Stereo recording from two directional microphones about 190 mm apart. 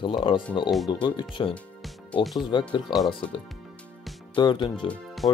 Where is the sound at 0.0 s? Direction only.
25° left (ahead or behind).